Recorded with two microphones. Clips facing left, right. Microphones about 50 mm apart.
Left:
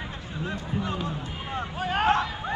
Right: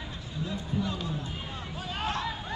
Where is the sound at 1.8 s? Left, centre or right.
Left.